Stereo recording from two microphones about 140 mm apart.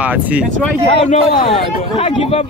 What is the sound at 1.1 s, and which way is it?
Speech, 45° left (ahead or behind).